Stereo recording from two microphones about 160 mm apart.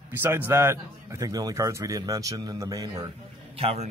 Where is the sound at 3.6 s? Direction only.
40° right (ahead or behind).